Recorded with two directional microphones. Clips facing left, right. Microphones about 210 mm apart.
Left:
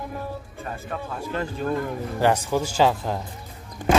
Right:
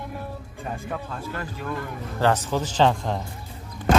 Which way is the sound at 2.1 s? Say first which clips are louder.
Left 1 dB; 10° left (ahead or behind).